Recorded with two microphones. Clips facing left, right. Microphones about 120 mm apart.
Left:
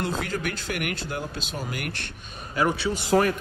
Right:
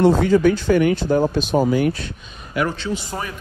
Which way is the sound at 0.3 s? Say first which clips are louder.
Right 15 dB; 90° right.